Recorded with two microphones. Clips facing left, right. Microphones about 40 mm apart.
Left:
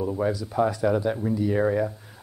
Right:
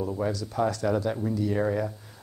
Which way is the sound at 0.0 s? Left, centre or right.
Centre.